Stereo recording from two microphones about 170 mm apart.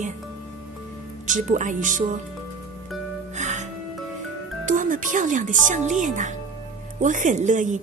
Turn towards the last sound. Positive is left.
turn(degrees=-45)  # may be behind; listen again after turning